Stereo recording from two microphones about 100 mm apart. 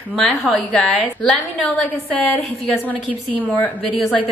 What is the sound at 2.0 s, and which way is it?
Speech, 15° left (ahead or behind).